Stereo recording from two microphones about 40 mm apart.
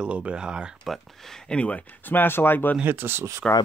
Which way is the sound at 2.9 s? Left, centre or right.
Right.